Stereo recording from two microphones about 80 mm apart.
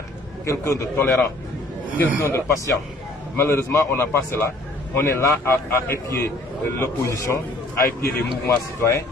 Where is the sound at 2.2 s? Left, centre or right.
Left.